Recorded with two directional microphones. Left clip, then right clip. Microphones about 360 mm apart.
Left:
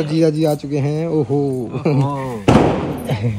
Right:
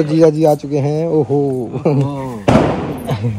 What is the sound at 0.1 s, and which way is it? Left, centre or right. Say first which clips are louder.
Speech: right 5 dB; centre.